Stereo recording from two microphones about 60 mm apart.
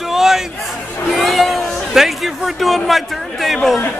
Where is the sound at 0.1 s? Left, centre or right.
Centre.